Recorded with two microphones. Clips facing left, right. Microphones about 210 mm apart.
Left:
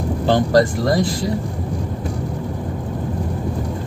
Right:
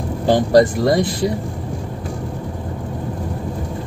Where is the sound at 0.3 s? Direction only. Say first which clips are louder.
Right 3 dB; 15° right (ahead or behind).